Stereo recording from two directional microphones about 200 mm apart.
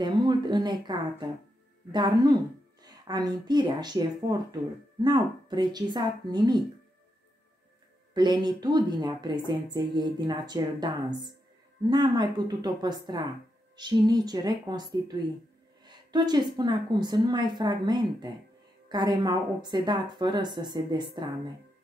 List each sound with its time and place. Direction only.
0.0 s speech: 20° right (ahead or behind)
8.1 s speech: 20° right (ahead or behind)
15.8 s a sound: 20° right (ahead or behind)
16.5 s speech: 20° right (ahead or behind)